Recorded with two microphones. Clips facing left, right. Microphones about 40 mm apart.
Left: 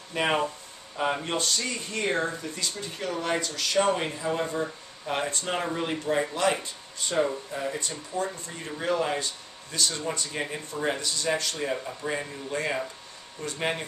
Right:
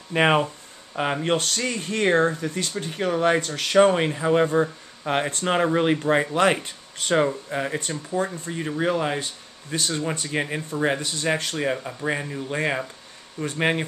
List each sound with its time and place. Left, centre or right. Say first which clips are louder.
0.1 s speech: right 6 dB; right
1.2 s speech: right 5 dB; right
7.0 s speech: right 5 dB; right
8.1 s speech: right 5 dB; right
12.0 s speech: right 6 dB; right